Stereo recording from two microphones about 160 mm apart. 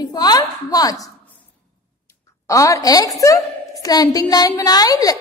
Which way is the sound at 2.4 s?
20° left (ahead or behind).